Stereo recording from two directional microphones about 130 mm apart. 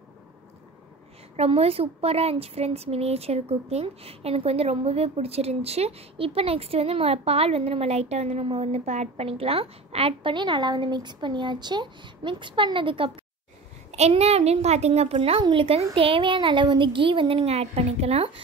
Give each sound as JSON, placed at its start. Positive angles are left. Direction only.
{"t": 1.3, "sound": "speech", "side_deg": -50}
{"t": 13.9, "sound": "speech", "side_deg": -55}